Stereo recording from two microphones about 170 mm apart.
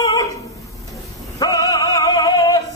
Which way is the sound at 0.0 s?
20° left (ahead or behind).